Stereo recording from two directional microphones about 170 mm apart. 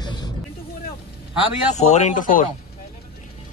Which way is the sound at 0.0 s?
25° left (ahead or behind).